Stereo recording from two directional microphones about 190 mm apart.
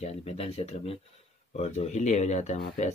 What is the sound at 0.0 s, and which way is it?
Speech, 35° left (ahead or behind).